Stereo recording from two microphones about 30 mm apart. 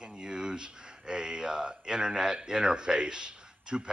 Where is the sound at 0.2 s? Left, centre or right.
Right.